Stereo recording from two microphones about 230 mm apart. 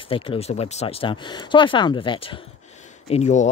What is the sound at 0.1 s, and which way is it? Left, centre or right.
Speech, left.